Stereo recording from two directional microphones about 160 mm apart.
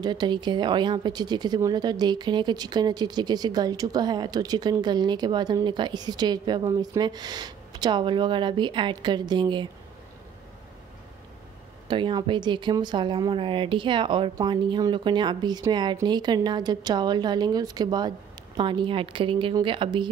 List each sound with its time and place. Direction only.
0.0 s speech: 25° right (ahead or behind)
11.9 s a woman's voice: 30° right (ahead or behind)